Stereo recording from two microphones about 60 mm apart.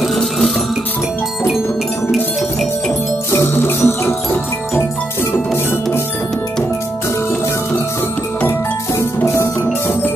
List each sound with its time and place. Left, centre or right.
3.3 s music: left
9.2 s music: left